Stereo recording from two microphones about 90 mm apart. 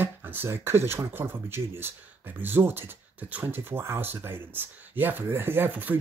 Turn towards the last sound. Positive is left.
turn(degrees=-20)  # may be behind; listen again after turning